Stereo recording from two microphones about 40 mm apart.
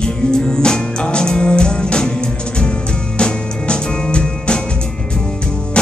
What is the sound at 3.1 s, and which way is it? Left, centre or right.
Music, left.